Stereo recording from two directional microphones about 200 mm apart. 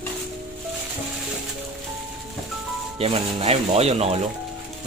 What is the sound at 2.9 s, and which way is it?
Speech, 30° right (ahead or behind).